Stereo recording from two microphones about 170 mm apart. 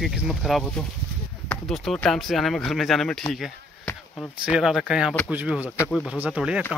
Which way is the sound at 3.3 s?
Centre (ahead or behind).